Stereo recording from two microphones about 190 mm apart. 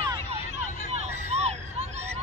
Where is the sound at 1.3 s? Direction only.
35° right (ahead or behind).